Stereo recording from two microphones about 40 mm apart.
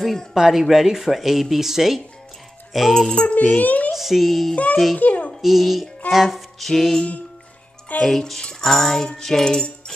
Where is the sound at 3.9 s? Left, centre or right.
Centre.